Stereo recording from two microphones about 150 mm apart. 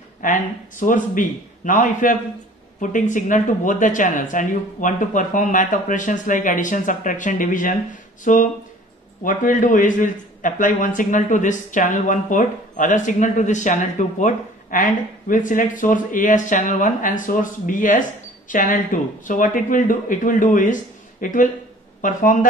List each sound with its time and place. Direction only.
0.2 s a man's voice: 60° left (ahead or behind)